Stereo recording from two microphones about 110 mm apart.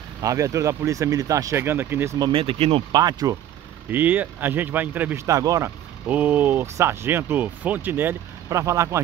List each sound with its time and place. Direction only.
0.2 s speech: 30° right (ahead or behind)
2.3 s speech: 60° right (ahead or behind)
2.9 s speech: 40° right (ahead or behind)
3.9 s speech: 15° right (ahead or behind)
6.0 s speech: 15° right (ahead or behind)
8.5 s speech: 30° right (ahead or behind)